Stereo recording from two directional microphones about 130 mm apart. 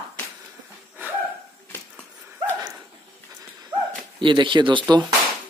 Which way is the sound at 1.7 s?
15° left (ahead or behind).